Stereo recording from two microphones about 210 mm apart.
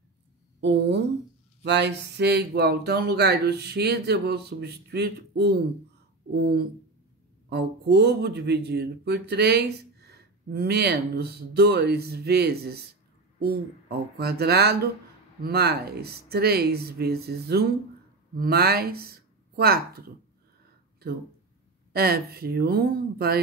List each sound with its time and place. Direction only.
0.6 s a woman's voice: 55° right (ahead or behind)
21.9 s speech: 45° right (ahead or behind)